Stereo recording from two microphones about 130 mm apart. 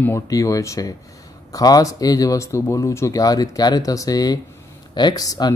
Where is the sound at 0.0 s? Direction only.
20° left (ahead or behind).